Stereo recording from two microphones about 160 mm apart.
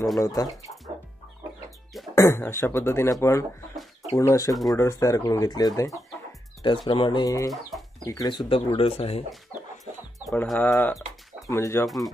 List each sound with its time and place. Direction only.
0.2 s speech: 20° left (ahead or behind)
2.1 s speech: 15° left (ahead or behind); by 9.2 s 35° left (ahead or behind)
10.3 s speech: 5° left (ahead or behind)